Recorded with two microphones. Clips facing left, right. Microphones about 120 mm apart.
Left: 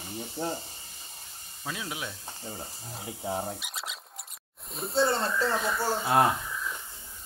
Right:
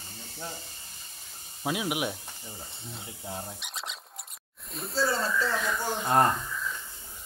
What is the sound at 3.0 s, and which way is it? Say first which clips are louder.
Speech: left 5 dB; 20° left (ahead or behind).